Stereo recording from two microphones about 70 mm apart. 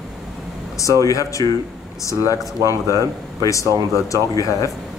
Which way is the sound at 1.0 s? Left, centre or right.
Left.